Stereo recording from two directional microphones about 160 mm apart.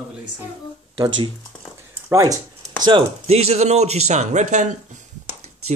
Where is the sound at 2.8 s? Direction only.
35° right (ahead or behind).